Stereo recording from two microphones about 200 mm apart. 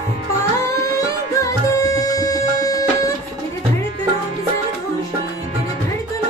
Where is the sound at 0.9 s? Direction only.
15° left (ahead or behind).